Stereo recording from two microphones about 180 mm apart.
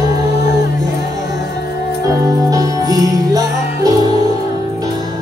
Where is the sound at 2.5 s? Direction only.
20° right (ahead or behind).